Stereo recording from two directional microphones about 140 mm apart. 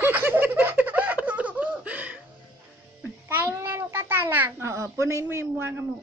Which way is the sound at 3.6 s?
20° right (ahead or behind).